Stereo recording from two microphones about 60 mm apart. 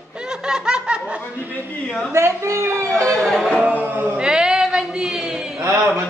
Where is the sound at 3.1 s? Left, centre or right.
Centre.